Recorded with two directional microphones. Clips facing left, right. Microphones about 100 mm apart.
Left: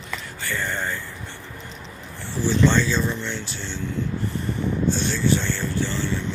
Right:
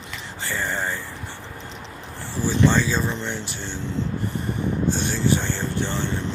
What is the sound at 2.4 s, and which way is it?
Speech, 5° right (ahead or behind).